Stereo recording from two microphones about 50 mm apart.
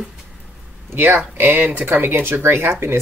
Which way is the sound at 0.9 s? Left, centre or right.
Right.